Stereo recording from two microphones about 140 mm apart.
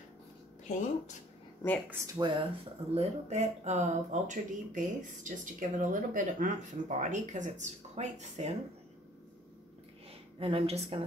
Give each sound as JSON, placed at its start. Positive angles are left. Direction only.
{"t": 0.7, "sound": "speech", "side_deg": 60}
{"t": 2.1, "sound": "speech", "side_deg": -35}
{"t": 2.9, "sound": "speech", "side_deg": -50}
{"t": 10.4, "sound": "speech", "side_deg": -45}